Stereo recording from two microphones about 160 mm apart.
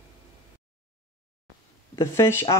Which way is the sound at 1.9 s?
15° left (ahead or behind).